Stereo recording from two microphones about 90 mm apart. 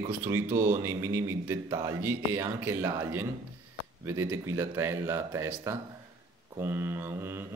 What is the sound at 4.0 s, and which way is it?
Mantra, 30° right (ahead or behind).